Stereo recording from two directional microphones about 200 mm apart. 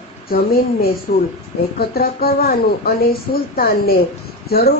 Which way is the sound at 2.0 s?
50° left (ahead or behind).